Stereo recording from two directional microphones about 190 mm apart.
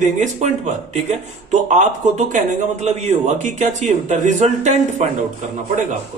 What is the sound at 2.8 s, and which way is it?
A man's voice, 35° right (ahead or behind).